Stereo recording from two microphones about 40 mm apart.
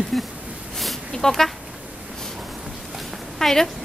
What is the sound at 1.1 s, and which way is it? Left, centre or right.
Speech, centre.